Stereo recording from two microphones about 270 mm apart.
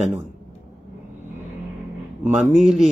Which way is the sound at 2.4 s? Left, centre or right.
Centre.